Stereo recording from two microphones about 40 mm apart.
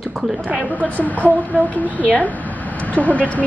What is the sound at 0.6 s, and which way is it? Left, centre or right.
A woman's voice, left.